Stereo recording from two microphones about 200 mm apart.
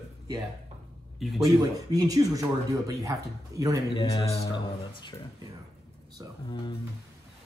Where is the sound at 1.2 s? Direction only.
Centre (ahead or behind).